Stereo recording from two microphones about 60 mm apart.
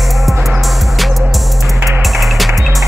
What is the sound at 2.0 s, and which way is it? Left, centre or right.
Music, centre.